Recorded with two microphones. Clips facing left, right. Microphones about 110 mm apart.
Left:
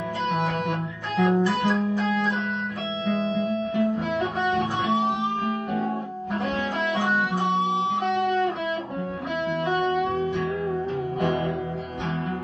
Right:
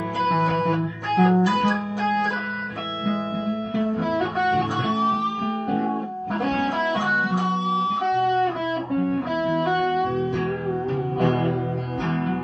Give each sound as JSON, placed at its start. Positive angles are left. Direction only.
{"t": 0.4, "sound": "music", "side_deg": -45}
{"t": 1.1, "sound": "guitar", "side_deg": -45}
{"t": 4.4, "sound": "music", "side_deg": -50}
{"t": 8.0, "sound": "guitar", "side_deg": -45}
{"t": 9.7, "sound": "music", "side_deg": -50}